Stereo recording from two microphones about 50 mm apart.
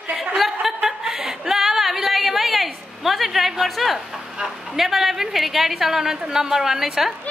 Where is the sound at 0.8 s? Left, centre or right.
Centre.